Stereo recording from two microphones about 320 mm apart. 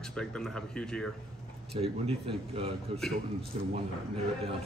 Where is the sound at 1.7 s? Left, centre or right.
Centre.